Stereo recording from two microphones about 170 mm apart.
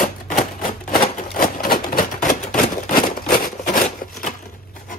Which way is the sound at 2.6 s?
55° left (ahead or behind).